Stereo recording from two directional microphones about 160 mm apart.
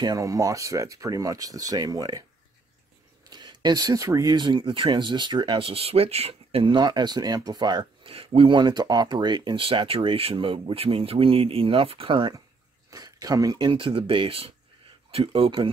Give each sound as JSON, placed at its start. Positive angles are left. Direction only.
{"t": 0.0, "sound": "speech", "side_deg": -20}
{"t": 3.3, "sound": "speech", "side_deg": -25}